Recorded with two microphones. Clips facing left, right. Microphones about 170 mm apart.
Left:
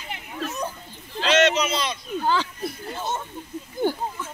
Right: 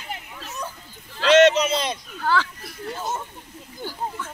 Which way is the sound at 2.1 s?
20° left (ahead or behind).